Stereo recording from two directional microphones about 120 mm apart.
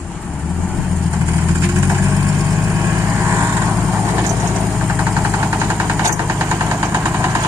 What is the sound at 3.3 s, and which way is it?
Vehicle, 20° right (ahead or behind).